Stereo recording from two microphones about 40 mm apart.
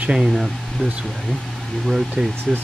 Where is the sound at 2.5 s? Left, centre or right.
Centre.